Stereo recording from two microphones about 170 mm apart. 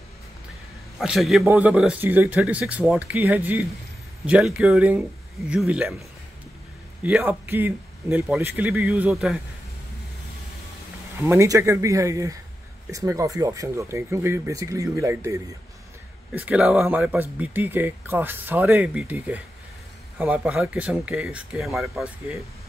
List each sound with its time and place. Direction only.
0.9 s a man's voice: centre (ahead or behind)
11.1 s speech: 15° right (ahead or behind)
16.3 s a man's voice: 5° right (ahead or behind)